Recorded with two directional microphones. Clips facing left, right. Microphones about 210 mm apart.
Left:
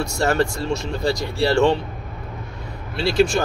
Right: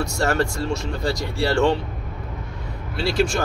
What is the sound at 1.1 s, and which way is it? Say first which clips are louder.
Speech: left 2 dB; 25° left (ahead or behind).